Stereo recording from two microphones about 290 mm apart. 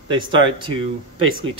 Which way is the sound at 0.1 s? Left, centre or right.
Centre.